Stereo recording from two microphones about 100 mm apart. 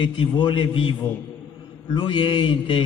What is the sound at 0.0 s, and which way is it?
Speech, 55° left (ahead or behind).